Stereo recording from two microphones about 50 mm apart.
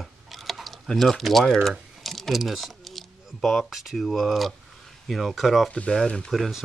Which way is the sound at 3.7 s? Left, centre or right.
Centre.